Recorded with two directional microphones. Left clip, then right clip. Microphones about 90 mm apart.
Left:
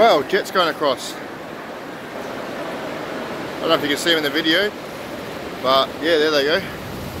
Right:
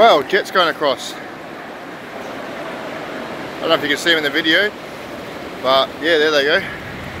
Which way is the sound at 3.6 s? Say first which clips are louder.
Right 2 dB; 20° left (ahead or behind).